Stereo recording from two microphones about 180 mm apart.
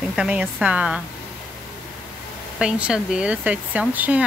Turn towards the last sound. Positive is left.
turn(degrees=-5)  # may be behind; listen again after turning